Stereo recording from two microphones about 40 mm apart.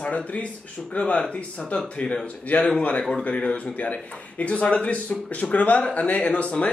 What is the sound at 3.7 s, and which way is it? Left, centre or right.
A man's voice, left.